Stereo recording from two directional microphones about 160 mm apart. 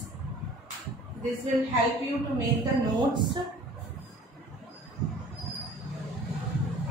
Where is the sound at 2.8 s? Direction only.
25° right (ahead or behind).